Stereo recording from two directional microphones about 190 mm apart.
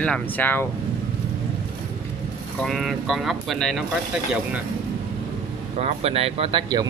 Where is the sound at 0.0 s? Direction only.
10° left (ahead or behind).